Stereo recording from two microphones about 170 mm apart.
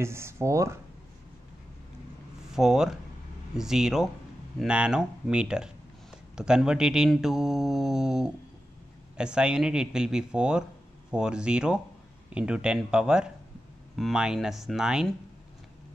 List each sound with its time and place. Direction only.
0.0 s speech: 15° right (ahead or behind)
2.5 s speech: 5° right (ahead or behind)